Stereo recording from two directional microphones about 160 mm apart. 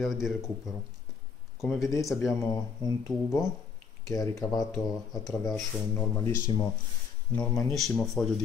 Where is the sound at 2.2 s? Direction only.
15° left (ahead or behind).